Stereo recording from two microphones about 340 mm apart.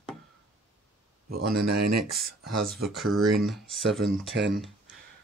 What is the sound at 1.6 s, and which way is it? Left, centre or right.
Speech, right.